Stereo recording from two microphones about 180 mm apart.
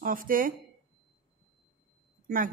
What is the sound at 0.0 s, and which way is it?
Speech, 50° right (ahead or behind).